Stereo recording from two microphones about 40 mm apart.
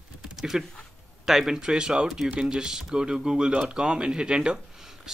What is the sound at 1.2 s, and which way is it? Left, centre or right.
Speech, centre.